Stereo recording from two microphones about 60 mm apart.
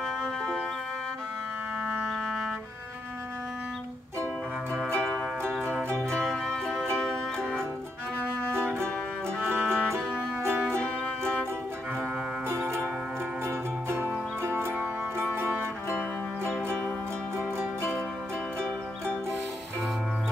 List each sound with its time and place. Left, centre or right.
0.0 s music: centre
2.0 s music: centre
4.8 s music: centre
9.5 s music: centre
9.9 s music: right
12.4 s music: right